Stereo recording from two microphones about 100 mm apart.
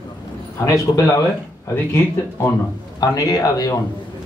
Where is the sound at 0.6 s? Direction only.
35° left (ahead or behind).